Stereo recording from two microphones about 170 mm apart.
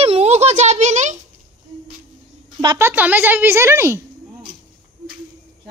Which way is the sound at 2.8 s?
10° right (ahead or behind).